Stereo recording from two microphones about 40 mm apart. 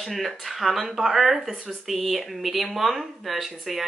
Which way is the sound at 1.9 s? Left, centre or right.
Centre.